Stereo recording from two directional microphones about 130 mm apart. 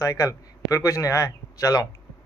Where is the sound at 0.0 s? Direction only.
25° left (ahead or behind).